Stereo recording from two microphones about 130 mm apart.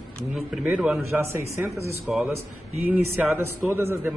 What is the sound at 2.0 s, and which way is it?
A man's voice, 5° right (ahead or behind).